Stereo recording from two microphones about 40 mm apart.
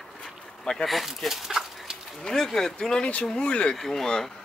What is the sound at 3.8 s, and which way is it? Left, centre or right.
Speech, centre.